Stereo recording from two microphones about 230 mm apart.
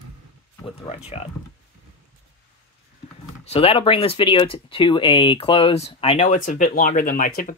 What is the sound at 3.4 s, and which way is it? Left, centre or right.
Speech, left.